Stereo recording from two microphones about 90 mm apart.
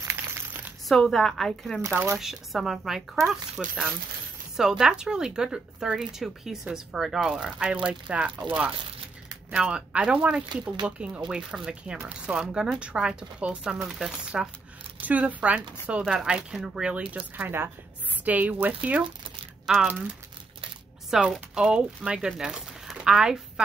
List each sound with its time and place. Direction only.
0.0 s crumpling: 30° right (ahead or behind)
0.5 s crumpling: 20° right (ahead or behind)
0.8 s speech: 5° left (ahead or behind)
4.6 s speech: 5° right (ahead or behind)
9.6 s speech: 10° right (ahead or behind)
16.9 s speech: 15° right (ahead or behind)
19.6 s speech: 5° right (ahead or behind)
21.1 s speech: 5° right (ahead or behind)